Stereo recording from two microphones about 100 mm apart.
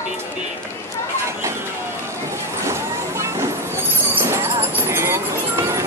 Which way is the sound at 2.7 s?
30° right (ahead or behind).